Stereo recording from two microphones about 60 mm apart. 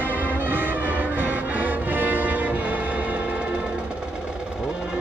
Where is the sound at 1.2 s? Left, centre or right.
Right.